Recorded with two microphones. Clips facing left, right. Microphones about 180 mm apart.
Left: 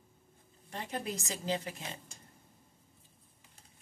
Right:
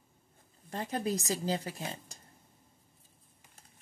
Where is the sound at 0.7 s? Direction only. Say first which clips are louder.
Right 5 dB; 40° right (ahead or behind).